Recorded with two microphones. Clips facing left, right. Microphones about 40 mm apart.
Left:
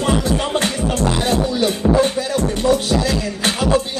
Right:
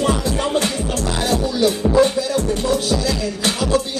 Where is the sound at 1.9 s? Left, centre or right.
Left.